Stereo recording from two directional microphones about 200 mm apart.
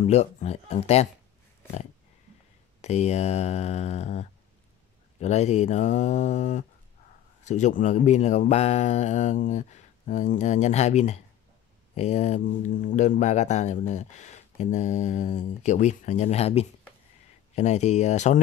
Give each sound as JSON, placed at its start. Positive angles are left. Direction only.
{"t": 0.0, "sound": "speech", "side_deg": 35}
{"t": 2.8, "sound": "speech", "side_deg": 35}